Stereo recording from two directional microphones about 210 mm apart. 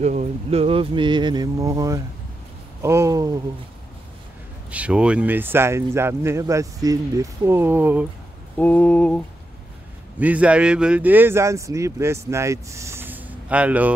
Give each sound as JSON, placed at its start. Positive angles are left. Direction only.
{"t": 0.0, "sound": "speech", "side_deg": -35}
{"t": 4.6, "sound": "speech", "side_deg": -5}
{"t": 8.5, "sound": "mantra", "side_deg": 5}
{"t": 10.1, "sound": "speech", "side_deg": -5}